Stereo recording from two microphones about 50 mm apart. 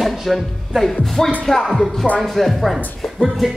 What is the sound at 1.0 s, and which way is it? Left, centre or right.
Speech, centre.